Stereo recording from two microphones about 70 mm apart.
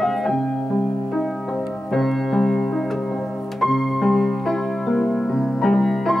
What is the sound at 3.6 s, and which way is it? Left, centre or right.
Music, centre.